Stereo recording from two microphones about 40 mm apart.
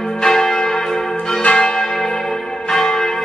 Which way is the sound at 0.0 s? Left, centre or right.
Centre.